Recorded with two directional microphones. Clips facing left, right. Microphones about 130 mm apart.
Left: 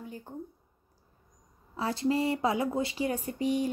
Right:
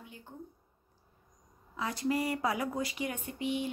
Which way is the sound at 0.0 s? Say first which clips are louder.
Left 9 dB; 40° left (ahead or behind).